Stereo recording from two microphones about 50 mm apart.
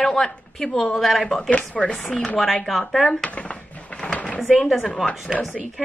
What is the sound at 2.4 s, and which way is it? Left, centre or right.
Speech, centre.